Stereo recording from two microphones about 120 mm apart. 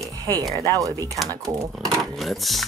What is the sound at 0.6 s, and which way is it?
Speech, 30° right (ahead or behind).